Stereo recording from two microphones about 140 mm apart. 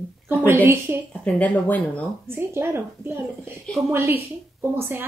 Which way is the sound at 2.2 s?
15° right (ahead or behind).